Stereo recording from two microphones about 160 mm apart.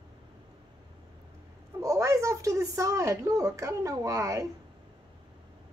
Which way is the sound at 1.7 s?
20° right (ahead or behind).